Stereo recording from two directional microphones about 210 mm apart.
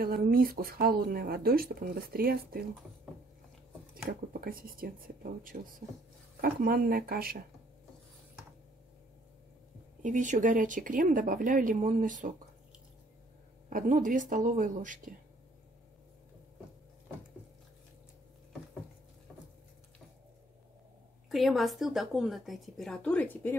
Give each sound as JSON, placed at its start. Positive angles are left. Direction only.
{"t": 0.0, "sound": "speech", "side_deg": -45}
{"t": 3.9, "sound": "speech", "side_deg": -45}
{"t": 10.0, "sound": "speech", "side_deg": -35}
{"t": 13.7, "sound": "speech", "side_deg": -40}
{"t": 21.3, "sound": "a woman's voice", "side_deg": 0}